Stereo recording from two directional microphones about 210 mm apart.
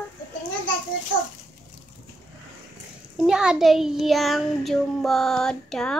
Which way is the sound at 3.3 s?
5° right (ahead or behind).